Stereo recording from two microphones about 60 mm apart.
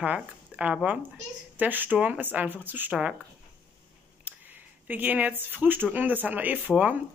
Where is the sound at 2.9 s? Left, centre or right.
Centre.